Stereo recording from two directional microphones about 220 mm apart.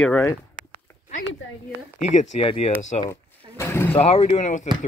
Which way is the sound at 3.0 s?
15° left (ahead or behind).